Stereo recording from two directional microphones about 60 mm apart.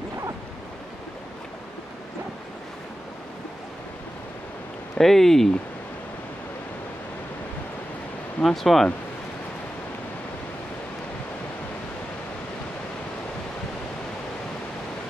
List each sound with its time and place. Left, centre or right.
4.9 s speech: centre
8.4 s speech: centre